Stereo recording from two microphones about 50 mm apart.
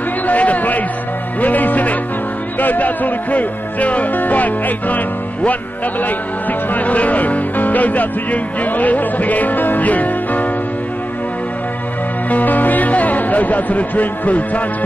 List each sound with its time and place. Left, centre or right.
0.3 s a sound: left
1.4 s music: left
2.6 s speech: left
12.3 s speech: left